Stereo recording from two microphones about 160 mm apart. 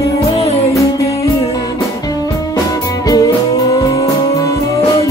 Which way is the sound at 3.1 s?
20° left (ahead or behind).